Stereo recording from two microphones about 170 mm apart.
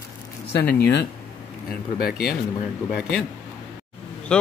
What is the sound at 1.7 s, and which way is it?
Speech, 65° left (ahead or behind).